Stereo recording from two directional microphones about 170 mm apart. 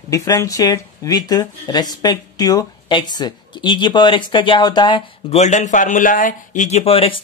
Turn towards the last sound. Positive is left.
turn(degrees=35)  # may be behind; listen again after turning